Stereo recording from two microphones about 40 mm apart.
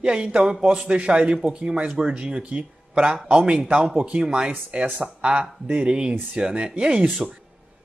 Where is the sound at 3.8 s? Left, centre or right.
Right.